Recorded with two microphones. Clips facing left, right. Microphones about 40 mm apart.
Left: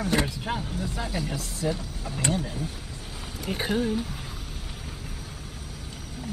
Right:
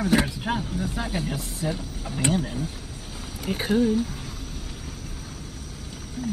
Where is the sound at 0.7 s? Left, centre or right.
Centre.